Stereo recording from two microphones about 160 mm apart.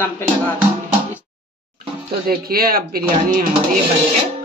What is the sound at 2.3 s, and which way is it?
Speech, 70° right (ahead or behind).